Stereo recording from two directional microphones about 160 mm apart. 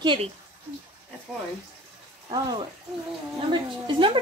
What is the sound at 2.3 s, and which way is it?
A woman's voice, 30° right (ahead or behind).